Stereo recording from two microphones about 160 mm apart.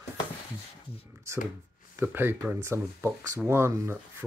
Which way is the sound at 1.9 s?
15° right (ahead or behind).